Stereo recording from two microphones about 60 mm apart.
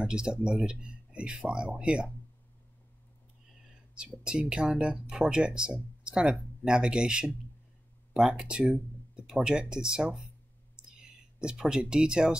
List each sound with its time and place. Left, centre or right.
0.0 s speech: centre
3.9 s speech: centre
10.9 s whispering: centre
11.6 s speech: centre